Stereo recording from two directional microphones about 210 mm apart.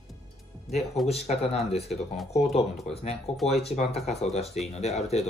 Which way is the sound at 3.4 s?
Centre (ahead or behind).